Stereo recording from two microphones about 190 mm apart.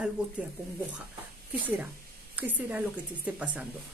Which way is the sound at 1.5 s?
10° right (ahead or behind).